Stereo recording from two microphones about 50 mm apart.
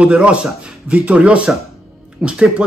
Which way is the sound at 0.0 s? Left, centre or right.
Right.